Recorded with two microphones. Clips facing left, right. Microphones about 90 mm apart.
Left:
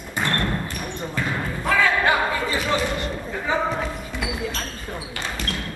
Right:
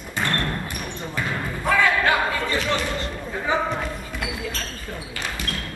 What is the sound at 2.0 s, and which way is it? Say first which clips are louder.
Basketball bounce: left 1 dB; 15° left (ahead or behind).